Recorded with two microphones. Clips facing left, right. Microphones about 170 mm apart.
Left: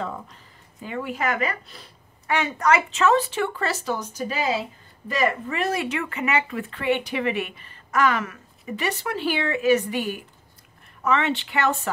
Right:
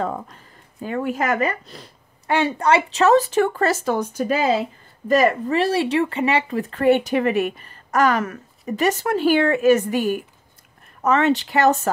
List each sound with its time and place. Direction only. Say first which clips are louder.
0.8 s a woman's voice: right 5 dB; 45° right (ahead or behind)
6.7 s a woman's voice: right 8 dB; 45° right (ahead or behind)